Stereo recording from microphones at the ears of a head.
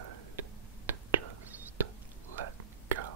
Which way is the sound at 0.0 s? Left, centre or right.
Right.